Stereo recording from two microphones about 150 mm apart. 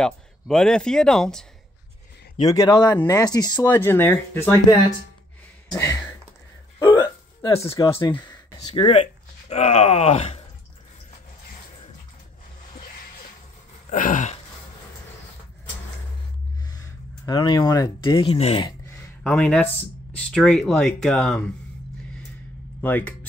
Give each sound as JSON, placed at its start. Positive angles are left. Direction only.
{"t": 0.0, "sound": "speech", "side_deg": 5}
{"t": 2.5, "sound": "speech", "side_deg": 25}
{"t": 3.6, "sound": "speech", "side_deg": 15}
{"t": 5.7, "sound": "a sound", "side_deg": 25}
{"t": 6.8, "sound": "hiccup", "side_deg": 25}
{"t": 7.9, "sound": "speech", "side_deg": 35}
{"t": 13.8, "sound": "throat clearing", "side_deg": 60}
{"t": 17.3, "sound": "speech", "side_deg": 30}
{"t": 18.9, "sound": "a sound", "side_deg": 15}
{"t": 19.3, "sound": "speech", "side_deg": 5}
{"t": 22.8, "sound": "speech", "side_deg": 10}